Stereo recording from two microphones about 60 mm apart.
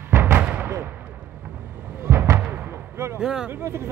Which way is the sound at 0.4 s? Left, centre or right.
Right.